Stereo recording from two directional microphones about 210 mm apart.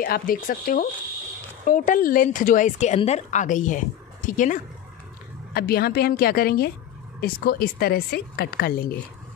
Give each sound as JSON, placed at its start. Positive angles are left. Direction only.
{"t": 0.0, "sound": "a woman's voice", "side_deg": 45}